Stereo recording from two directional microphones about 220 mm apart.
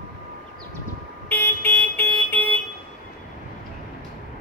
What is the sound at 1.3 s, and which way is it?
Vehicle, 10° left (ahead or behind).